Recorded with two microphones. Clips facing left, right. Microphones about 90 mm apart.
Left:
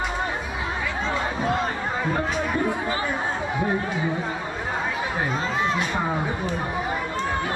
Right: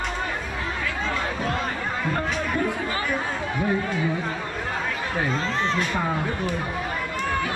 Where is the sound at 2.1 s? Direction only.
10° left (ahead or behind).